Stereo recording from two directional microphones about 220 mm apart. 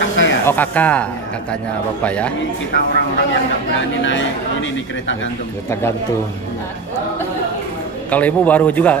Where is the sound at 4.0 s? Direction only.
60° left (ahead or behind).